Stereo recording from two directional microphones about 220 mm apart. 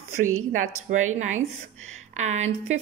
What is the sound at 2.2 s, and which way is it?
Speech, 30° right (ahead or behind).